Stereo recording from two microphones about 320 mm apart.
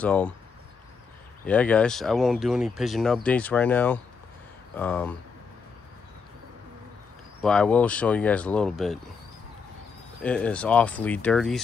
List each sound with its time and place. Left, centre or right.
0.0 s speech: centre
1.4 s speech: centre
7.4 s speech: centre
10.2 s speech: centre